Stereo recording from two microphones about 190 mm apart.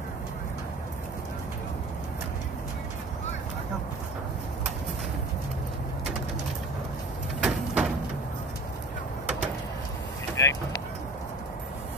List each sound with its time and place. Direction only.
7.4 s sliding door: centre (ahead or behind)
10.4 s vehicle: 15° left (ahead or behind)